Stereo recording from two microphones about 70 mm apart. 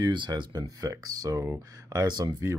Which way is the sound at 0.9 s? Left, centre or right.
Right.